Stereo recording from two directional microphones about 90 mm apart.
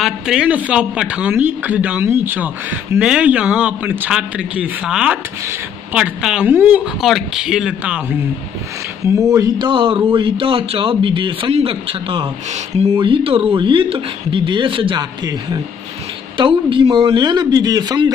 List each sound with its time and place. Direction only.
0.0 s a man's voice: 5° right (ahead or behind)
6.4 s speech: 20° right (ahead or behind)
6.8 s speech: 5° right (ahead or behind)
9.0 s speech: 40° right (ahead or behind)
9.6 s speech: 70° right (ahead or behind); by 12.3 s 90° right
12.9 s speech: 75° right (ahead or behind)
16.3 s speech: 70° right (ahead or behind)
16.9 s a man's voice: 55° right (ahead or behind)